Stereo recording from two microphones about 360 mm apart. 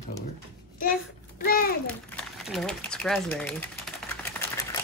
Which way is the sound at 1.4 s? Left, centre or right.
Left.